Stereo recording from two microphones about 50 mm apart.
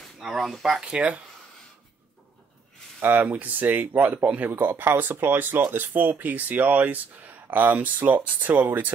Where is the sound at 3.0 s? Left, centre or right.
Right.